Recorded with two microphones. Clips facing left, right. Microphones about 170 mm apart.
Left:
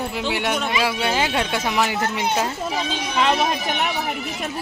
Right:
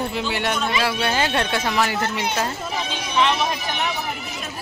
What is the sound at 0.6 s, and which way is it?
Speech, 15° left (ahead or behind).